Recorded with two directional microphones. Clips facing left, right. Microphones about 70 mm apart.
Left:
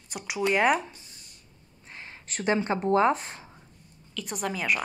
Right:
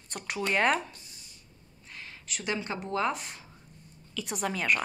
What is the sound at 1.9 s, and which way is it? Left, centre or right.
Speech, left.